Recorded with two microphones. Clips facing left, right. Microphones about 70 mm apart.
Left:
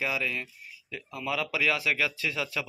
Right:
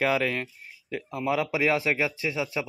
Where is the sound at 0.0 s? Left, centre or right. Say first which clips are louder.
Right 6 dB; right.